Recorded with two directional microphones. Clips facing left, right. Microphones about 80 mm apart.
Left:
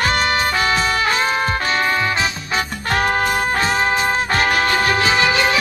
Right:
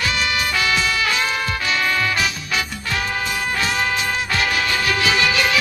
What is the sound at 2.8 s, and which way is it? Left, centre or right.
Music, left.